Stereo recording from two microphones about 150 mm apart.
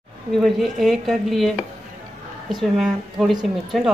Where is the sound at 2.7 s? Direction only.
Centre (ahead or behind).